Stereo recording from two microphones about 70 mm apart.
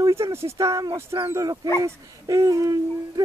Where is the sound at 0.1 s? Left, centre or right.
Right.